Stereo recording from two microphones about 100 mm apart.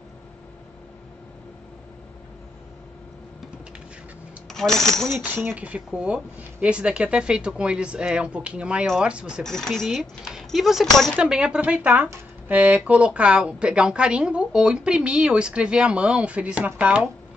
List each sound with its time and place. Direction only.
4.5 s speech: 5° left (ahead or behind)
5.2 s a woman's voice: 20° right (ahead or behind)
9.4 s a woman's voice: 5° left (ahead or behind)